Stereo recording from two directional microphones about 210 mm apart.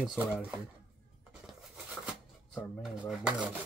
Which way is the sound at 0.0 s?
5° right (ahead or behind).